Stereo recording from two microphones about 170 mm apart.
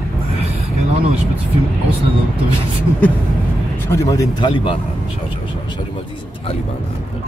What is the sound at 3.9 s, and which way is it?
Speech, 20° left (ahead or behind).